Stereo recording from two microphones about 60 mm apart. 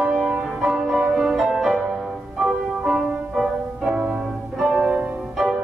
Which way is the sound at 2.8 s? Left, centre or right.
Centre.